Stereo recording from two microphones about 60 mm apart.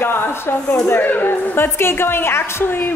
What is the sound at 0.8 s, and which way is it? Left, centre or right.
A woman's voice, left.